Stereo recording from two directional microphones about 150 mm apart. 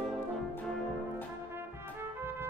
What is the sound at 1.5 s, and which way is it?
Brass instrument, 15° right (ahead or behind).